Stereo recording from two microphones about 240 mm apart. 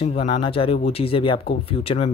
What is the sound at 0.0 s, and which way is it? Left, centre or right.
Speech, left.